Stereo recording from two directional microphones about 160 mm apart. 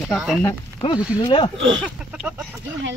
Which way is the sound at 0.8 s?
30° left (ahead or behind).